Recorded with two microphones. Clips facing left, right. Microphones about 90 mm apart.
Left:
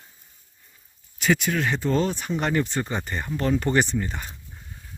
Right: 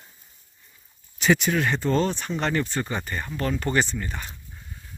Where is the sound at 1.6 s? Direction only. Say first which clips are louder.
Even; 5° left (ahead or behind).